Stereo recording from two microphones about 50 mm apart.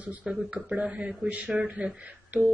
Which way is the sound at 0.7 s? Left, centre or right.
Right.